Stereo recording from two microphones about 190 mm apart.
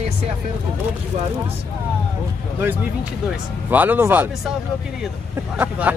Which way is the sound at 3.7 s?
10° right (ahead or behind).